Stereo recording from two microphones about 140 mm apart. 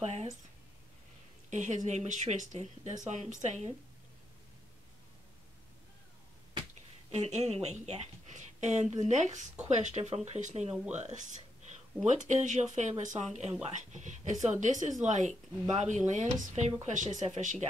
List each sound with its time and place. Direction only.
0.0 s speech: 50° right (ahead or behind)
1.5 s speech: 55° right (ahead or behind)
7.1 s a woman's voice: 55° right (ahead or behind)